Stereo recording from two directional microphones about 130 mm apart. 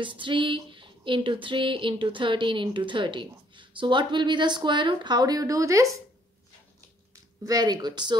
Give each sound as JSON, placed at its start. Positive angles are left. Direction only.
{"t": 0.0, "sound": "speech", "side_deg": -40}
{"t": 7.4, "sound": "speech", "side_deg": -30}